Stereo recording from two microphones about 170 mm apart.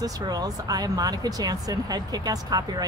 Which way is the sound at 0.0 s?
20° right (ahead or behind).